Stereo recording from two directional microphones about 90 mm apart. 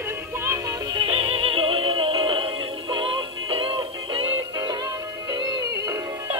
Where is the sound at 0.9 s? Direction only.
80° right.